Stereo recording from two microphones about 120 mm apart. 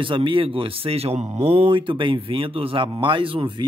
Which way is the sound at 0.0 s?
45° right (ahead or behind).